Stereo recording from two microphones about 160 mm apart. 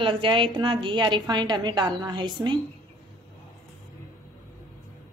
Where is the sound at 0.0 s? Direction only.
30° right (ahead or behind).